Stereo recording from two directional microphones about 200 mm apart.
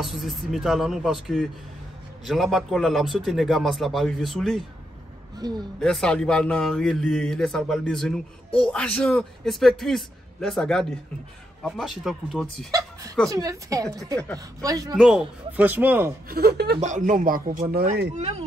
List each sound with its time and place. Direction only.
0.0 s speech: centre (ahead or behind)
5.4 s speech: 20° right (ahead or behind)
5.8 s speech: 5° left (ahead or behind)
13.3 s speech: 15° right (ahead or behind)
14.1 s speech: 5° left (ahead or behind)
14.6 s speech: 15° right (ahead or behind)
15.0 s speech: 5° right (ahead or behind)
16.3 s speech: 50° right (ahead or behind)
16.8 s speech: 40° right (ahead or behind)
18.1 s speech: 30° right (ahead or behind)